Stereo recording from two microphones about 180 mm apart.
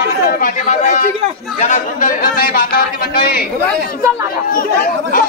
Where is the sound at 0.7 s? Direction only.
45° left (ahead or behind).